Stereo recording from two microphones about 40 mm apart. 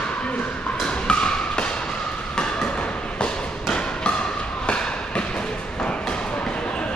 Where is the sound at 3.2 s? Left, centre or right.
Left.